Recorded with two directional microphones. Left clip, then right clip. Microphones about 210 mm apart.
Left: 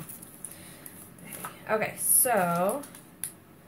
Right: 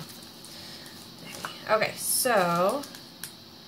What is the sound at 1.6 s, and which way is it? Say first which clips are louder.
Speech: right 3 dB; 20° right (ahead or behind).